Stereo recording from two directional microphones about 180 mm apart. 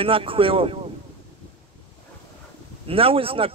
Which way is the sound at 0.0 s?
30° right (ahead or behind).